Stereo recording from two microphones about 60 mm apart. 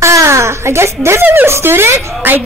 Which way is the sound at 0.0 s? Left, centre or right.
Right.